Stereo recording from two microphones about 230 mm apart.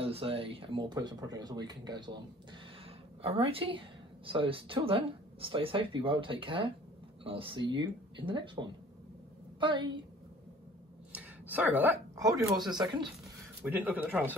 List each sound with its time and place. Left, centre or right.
0.0 s a woman's voice: right
11.1 s speech: centre
13.6 s speech: centre